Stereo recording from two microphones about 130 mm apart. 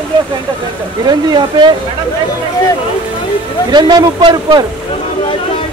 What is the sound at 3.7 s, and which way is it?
Speech, 35° right (ahead or behind).